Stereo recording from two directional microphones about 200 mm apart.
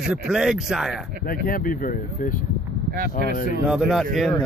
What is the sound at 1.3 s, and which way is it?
Speech, 45° left (ahead or behind).